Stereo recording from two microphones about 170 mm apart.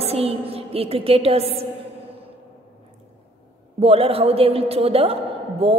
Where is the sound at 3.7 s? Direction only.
35° right (ahead or behind).